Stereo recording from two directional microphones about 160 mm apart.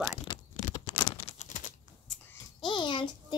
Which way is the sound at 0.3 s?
30° left (ahead or behind).